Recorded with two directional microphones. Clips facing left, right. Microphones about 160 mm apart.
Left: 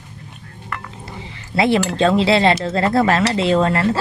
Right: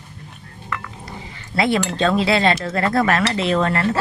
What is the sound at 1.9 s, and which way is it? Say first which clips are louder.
Speech: left 3 dB; 25° left (ahead or behind).